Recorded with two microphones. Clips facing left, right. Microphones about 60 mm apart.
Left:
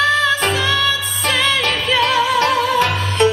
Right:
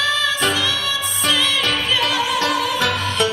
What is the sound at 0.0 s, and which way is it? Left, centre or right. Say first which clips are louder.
Music: left 4 dB; left.